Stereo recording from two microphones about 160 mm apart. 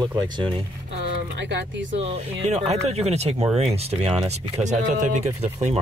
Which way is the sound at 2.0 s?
40° right (ahead or behind).